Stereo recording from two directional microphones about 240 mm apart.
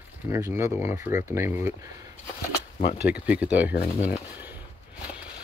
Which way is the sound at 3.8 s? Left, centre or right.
Left.